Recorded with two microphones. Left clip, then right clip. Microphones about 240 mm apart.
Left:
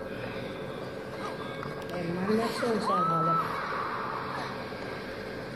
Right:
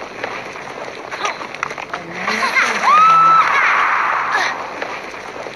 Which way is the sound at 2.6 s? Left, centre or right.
Right.